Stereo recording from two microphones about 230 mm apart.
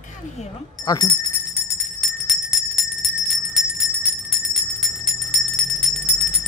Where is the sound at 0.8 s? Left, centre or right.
Centre.